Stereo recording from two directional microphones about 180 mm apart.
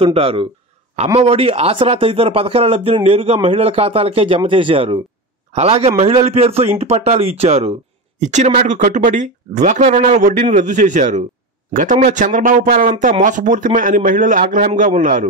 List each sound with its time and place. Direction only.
0.0 s a man's voice: 30° right (ahead or behind)